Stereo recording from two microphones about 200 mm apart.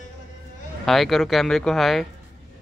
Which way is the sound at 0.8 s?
Centre (ahead or behind).